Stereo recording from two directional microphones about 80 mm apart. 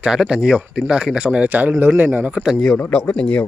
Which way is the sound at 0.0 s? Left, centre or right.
Centre.